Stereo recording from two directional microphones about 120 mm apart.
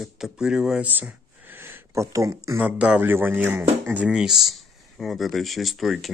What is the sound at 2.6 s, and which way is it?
A man's voice, 10° right (ahead or behind).